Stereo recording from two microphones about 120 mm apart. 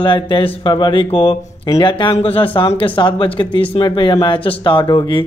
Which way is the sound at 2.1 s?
50° left (ahead or behind).